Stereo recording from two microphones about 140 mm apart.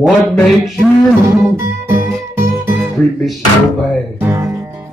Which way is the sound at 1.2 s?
20° right (ahead or behind).